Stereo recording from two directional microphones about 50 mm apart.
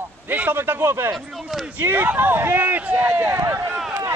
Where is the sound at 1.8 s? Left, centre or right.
Right.